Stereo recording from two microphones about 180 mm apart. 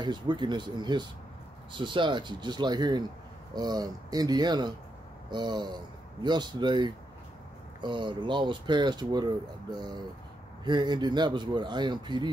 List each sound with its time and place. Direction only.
0.0 s speech: 25° right (ahead or behind)